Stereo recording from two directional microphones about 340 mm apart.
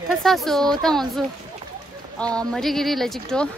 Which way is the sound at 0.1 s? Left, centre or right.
Centre.